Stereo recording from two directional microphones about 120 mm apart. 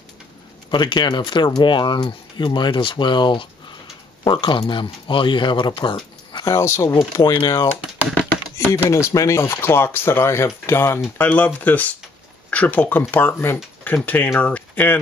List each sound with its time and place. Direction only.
0.7 s speech: 40° left (ahead or behind)
8.7 s speech: 20° left (ahead or behind)